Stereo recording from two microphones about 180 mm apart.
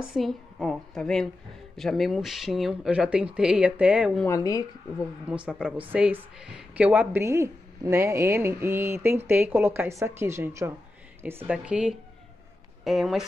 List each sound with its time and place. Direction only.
0.1 s speech: centre (ahead or behind)
4.3 s speech: 20° left (ahead or behind)
5.3 s speech: 5° right (ahead or behind)